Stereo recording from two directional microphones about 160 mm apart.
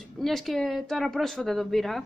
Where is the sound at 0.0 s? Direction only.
Centre (ahead or behind).